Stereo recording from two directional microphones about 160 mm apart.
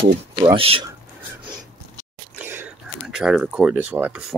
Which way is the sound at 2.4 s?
10° right (ahead or behind).